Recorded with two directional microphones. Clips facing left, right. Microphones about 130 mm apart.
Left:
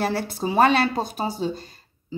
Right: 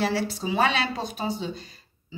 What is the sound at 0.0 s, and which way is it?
A woman's voice, 50° left (ahead or behind).